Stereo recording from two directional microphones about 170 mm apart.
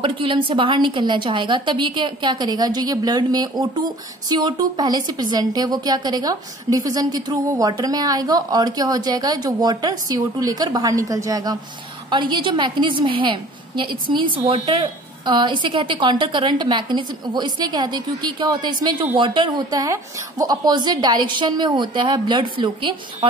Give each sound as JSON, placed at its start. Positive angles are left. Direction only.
{"t": 0.0, "sound": "a woman's voice", "side_deg": -30}